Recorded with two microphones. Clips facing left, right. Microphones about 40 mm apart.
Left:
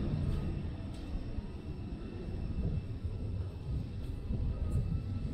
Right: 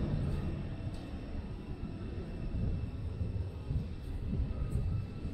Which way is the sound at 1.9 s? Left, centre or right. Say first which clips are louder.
Even; centre.